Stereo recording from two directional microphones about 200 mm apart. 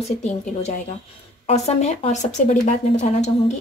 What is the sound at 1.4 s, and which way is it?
Speech, 30° left (ahead or behind).